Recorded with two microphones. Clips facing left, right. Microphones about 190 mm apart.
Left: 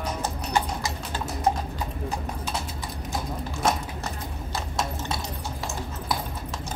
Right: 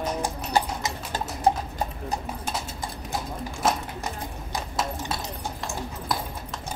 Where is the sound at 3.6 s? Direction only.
5° right (ahead or behind).